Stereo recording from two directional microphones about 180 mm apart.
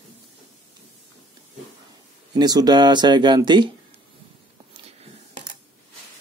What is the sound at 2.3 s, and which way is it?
Speech, 20° right (ahead or behind).